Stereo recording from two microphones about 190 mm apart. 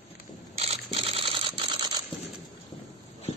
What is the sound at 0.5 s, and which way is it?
Camera, 30° right (ahead or behind).